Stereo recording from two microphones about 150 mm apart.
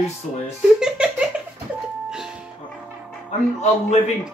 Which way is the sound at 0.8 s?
5° right (ahead or behind).